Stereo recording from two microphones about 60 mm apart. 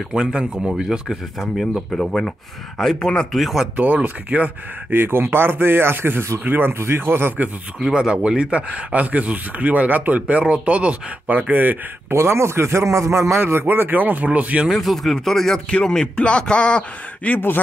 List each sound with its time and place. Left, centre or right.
0.1 s speech: centre
2.0 s a man's voice: centre
3.3 s speech: centre
3.7 s speech: right
4.9 s speech: right
7.9 s speech: centre
12.1 s a man's voice: right
13.4 s speech: right
14.7 s a man's voice: centre
17.3 s a man's voice: left